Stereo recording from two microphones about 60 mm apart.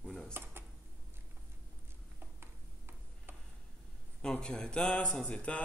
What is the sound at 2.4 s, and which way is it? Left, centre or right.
Tick-tock, right.